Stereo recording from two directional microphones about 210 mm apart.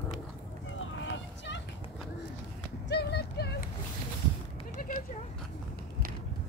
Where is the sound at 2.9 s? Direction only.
50° left (ahead or behind).